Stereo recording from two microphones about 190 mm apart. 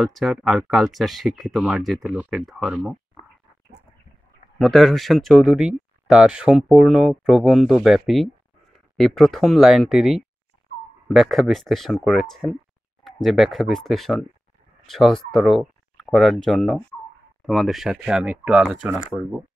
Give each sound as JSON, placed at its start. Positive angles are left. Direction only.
{"t": 0.0, "sound": "speech", "side_deg": 0}
{"t": 4.6, "sound": "speech", "side_deg": 0}